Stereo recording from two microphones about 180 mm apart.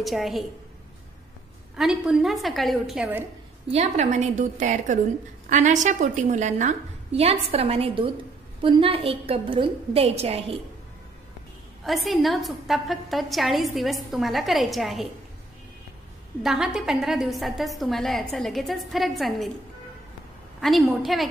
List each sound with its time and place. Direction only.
0.0 s a woman's voice: centre (ahead or behind)
1.8 s a woman's voice: 5° right (ahead or behind)
3.7 s a woman's voice: 40° right (ahead or behind)
11.8 s a woman's voice: centre (ahead or behind)
16.4 s a woman's voice: 5° right (ahead or behind)
20.6 s a woman's voice: centre (ahead or behind)